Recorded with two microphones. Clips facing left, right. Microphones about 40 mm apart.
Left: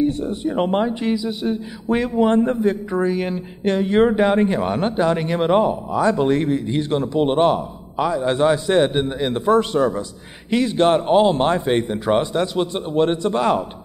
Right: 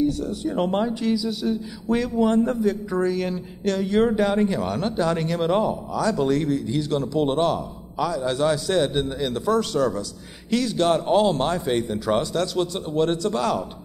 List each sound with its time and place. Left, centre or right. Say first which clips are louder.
0.0 s speech: left 3 dB; left